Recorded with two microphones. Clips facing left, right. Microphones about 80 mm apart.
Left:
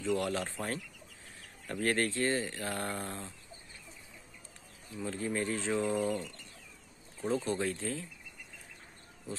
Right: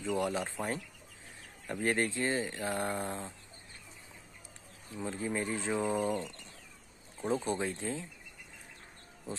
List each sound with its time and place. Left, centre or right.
0.0 s speech: centre
4.9 s speech: centre